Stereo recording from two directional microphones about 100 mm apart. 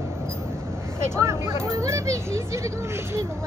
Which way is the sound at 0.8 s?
30° right (ahead or behind).